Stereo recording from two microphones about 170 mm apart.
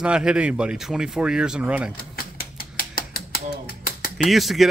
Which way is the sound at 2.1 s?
60° left (ahead or behind).